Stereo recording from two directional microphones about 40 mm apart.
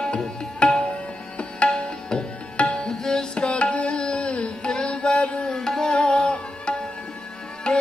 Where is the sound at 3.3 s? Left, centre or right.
Left.